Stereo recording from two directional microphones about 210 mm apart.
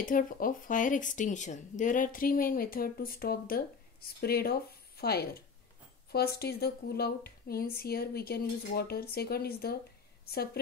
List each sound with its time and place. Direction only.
0.0 s speech: 40° left (ahead or behind)